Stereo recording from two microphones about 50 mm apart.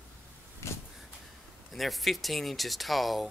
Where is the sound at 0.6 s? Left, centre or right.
Left.